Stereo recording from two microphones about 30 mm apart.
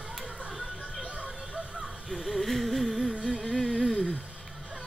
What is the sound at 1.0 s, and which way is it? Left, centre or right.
Music, right.